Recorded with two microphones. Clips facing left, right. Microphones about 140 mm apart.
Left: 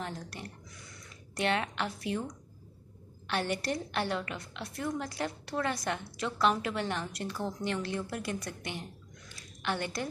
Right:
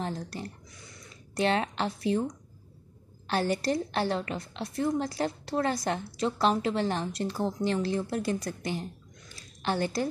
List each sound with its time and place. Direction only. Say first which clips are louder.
0.0 s a woman's voice: right 5 dB; 35° right (ahead or behind)
3.3 s a woman's voice: right 5 dB; 35° right (ahead or behind)